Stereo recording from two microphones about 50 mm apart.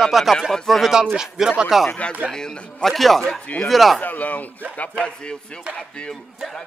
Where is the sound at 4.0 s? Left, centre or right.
Left.